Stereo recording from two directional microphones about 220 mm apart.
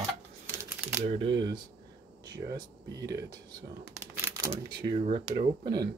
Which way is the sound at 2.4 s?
25° right (ahead or behind).